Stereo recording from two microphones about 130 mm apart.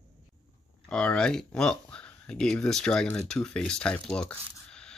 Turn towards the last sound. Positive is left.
turn(degrees=5)  # may be behind; listen again after turning